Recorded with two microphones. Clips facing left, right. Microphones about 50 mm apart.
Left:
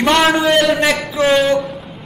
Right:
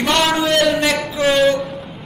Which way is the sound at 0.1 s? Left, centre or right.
Centre.